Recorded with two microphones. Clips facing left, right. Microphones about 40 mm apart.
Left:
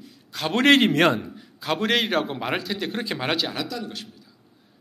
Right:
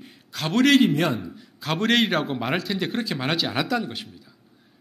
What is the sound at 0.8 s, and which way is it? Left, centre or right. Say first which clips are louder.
Speech: left 2 dB; left.